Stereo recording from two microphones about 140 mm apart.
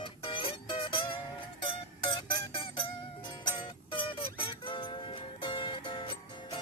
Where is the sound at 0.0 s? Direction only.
40° left (ahead or behind).